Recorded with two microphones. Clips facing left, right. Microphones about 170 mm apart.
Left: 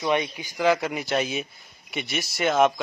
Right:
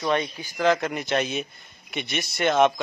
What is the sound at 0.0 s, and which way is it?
A man's voice, 5° left (ahead or behind).